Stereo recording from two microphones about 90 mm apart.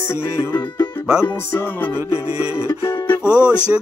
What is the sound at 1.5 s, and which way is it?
Music, 25° left (ahead or behind).